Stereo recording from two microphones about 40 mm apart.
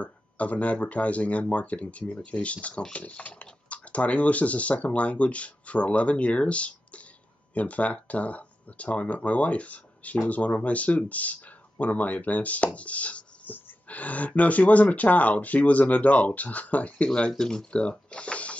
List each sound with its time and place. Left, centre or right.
0.0 s speech: left
17.4 s speech: centre
17.8 s speech: left